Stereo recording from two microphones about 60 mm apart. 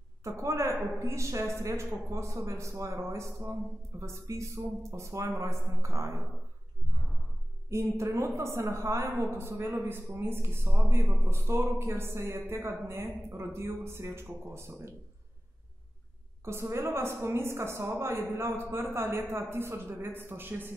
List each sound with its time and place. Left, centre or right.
0.2 s a woman's voice: right
7.7 s a woman's voice: right
16.4 s a woman's voice: right